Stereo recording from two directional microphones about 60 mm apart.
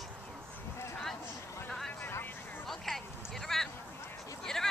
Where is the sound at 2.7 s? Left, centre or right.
Centre.